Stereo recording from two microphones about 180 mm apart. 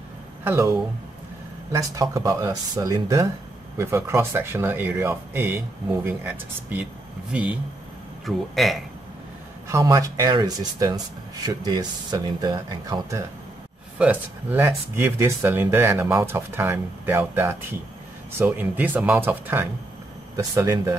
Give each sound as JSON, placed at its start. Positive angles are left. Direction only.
{"t": 0.4, "sound": "speech", "side_deg": -15}
{"t": 9.7, "sound": "speech", "side_deg": -15}
{"t": 13.9, "sound": "speech", "side_deg": -10}